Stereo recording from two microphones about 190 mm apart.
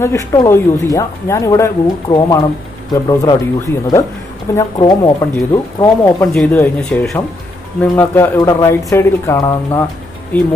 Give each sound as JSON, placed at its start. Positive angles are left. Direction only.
{"t": 0.0, "sound": "speech", "side_deg": 15}